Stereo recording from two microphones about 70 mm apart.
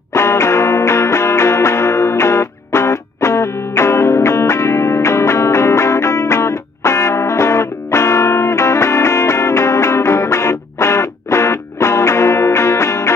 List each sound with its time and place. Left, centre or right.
0.1 s music: left